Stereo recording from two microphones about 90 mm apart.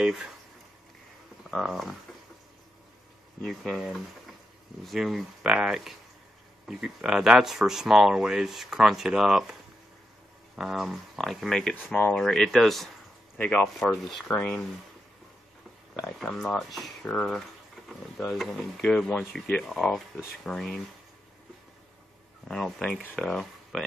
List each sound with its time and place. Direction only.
0.0 s speech: 5° right (ahead or behind)
1.4 s a sound: centre (ahead or behind)
3.4 s speech: 5° left (ahead or behind)
11.9 s speech: 15° left (ahead or behind)
12.2 s speech: 5° left (ahead or behind)
13.4 s speech: 15° left (ahead or behind)
13.7 s speech: centre (ahead or behind)
14.2 s speech: 15° left (ahead or behind)
16.0 s speech: 5° left (ahead or behind)
22.5 s speech: 5° left (ahead or behind)